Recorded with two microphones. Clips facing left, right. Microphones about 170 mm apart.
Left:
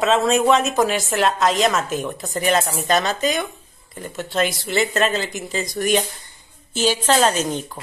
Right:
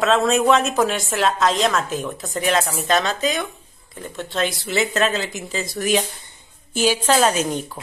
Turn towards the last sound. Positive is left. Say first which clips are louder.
# even
turn(degrees=-10)  # may be behind; listen again after turning